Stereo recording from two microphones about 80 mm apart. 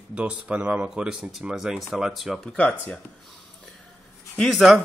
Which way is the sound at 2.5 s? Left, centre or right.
Centre.